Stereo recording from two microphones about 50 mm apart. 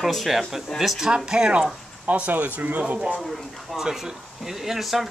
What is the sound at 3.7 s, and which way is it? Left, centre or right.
Speech, centre.